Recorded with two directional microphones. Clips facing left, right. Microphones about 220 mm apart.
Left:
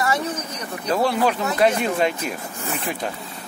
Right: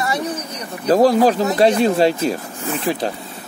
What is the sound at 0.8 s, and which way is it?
Speech, 40° right (ahead or behind).